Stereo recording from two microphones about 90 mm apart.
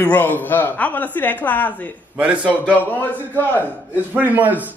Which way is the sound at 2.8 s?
20° left (ahead or behind).